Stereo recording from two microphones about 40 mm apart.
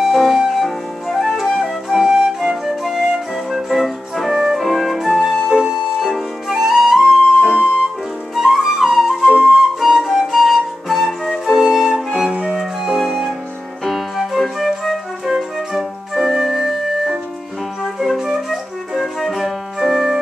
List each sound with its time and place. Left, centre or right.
0.0 s flute: centre
2.4 s music: centre
5.5 s music: centre
5.9 s flute: centre
7.3 s flute: centre
16.3 s music: centre
18.2 s music: centre
19.1 s music: centre
19.9 s organ: centre